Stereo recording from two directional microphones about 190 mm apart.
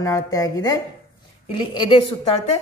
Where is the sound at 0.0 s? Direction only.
20° left (ahead or behind).